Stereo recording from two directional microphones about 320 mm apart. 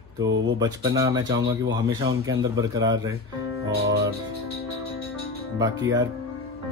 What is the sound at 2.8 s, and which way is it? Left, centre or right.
Speech, centre.